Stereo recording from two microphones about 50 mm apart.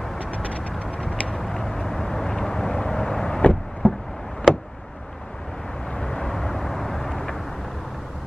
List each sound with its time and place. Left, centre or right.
0.2 s vehicle: left
1.3 s vehicle: centre
3.8 s a sound: left
5.9 s vehicle: centre